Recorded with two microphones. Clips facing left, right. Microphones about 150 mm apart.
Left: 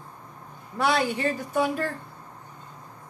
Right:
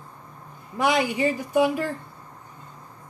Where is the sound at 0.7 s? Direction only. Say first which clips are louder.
Right 2 dB; 15° right (ahead or behind).